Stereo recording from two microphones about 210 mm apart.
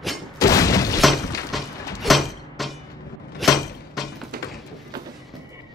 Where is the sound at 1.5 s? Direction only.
Centre (ahead or behind).